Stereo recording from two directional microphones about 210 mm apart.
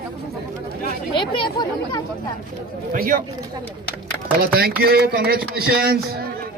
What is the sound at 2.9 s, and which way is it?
Speech, 45° right (ahead or behind).